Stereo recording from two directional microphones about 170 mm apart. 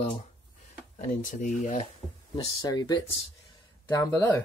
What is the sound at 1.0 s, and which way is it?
Speech, 50° left (ahead or behind).